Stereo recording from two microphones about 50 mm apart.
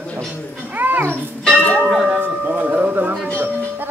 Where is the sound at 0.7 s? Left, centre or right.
Right.